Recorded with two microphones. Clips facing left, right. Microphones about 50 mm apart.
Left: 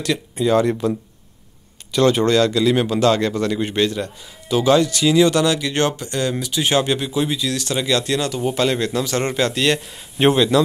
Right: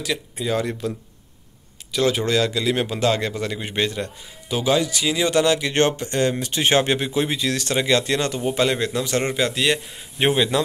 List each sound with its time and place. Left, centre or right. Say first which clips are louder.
0.0 s speech: left 6 dB; centre
1.9 s speech: left 5 dB; centre; by 8.4 s right
8.5 s speech: left 1 dB; centre
9.3 s speech: left 2 dB; centre